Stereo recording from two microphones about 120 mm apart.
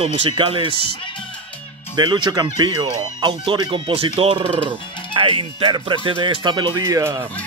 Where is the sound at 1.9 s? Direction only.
40° right (ahead or behind).